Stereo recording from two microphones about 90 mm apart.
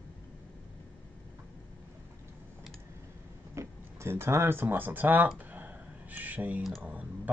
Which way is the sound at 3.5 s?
30° right (ahead or behind).